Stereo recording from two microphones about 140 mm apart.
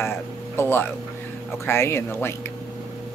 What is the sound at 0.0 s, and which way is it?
Speech, 15° left (ahead or behind).